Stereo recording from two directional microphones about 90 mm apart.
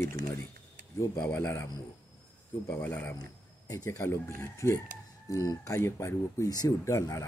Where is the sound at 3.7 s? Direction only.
35° left (ahead or behind).